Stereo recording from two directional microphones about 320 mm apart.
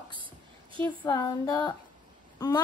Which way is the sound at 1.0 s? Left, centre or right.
Centre.